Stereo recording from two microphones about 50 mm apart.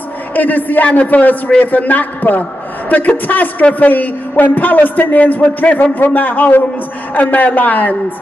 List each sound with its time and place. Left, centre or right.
0.3 s a man's voice: left